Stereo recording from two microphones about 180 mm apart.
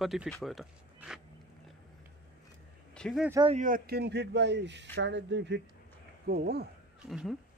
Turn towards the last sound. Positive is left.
turn(degrees=0)  # may be behind; listen again after turning